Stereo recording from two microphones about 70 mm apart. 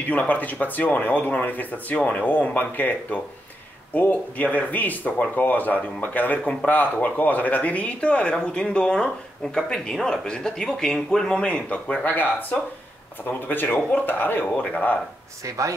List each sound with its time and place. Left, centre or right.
0.1 s speech: left
15.4 s a man's voice: right